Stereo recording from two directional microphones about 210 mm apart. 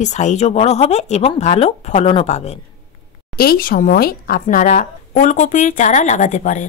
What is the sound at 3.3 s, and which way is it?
A woman's voice, 45° left (ahead or behind).